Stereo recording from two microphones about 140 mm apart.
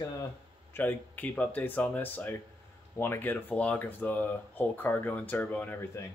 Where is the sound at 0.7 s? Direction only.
15° left (ahead or behind).